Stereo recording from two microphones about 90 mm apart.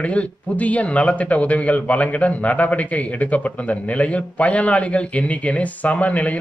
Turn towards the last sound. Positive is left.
turn(degrees=15)  # may be behind; listen again after turning